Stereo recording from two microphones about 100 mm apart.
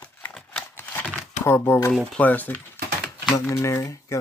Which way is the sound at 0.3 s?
5° left (ahead or behind).